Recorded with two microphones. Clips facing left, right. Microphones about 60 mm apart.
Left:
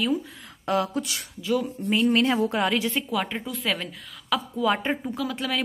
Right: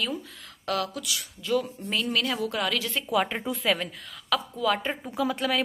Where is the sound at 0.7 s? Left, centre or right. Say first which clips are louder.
Left 4 dB; left.